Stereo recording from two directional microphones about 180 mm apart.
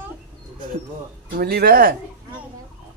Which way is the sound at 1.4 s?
55° right (ahead or behind).